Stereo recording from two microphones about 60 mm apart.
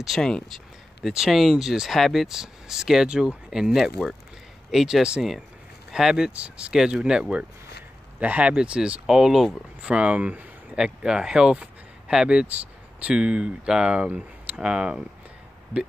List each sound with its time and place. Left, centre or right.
0.2 s speech: centre
1.0 s speech: centre; by 10.8 s right
10.8 s speech: centre
14.0 s speech: right